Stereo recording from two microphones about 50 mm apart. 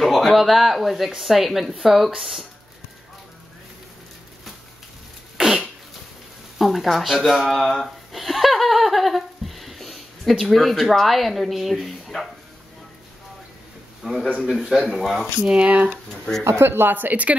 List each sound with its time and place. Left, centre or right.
0.0 s speech: centre
5.4 s a sound: centre
6.6 s speech: centre
7.5 s giggle: centre
14.0 s speech: centre
15.6 s speech: right
15.9 s speech: centre
16.4 s speech: right